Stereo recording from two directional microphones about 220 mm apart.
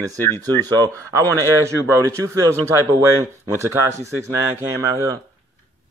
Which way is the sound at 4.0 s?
10° right (ahead or behind).